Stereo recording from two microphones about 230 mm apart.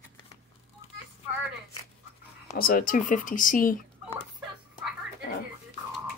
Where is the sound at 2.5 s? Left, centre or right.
Left.